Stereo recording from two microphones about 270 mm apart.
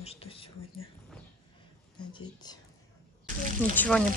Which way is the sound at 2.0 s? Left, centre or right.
Centre.